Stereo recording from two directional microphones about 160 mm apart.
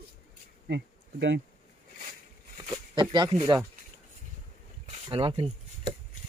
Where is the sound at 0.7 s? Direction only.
90° right.